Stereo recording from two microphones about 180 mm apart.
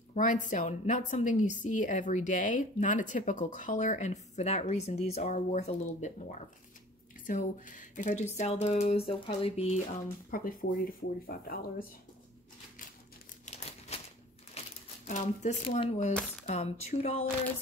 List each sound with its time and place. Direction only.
0.1 s a woman's voice: 45° left (ahead or behind)
7.2 s speech: 45° left (ahead or behind)
10.3 s a woman's voice: 50° left (ahead or behind)
13.5 s crumpling: 35° left (ahead or behind)
14.6 s a sound: 35° left (ahead or behind)
15.0 s a woman's voice: 45° left (ahead or behind)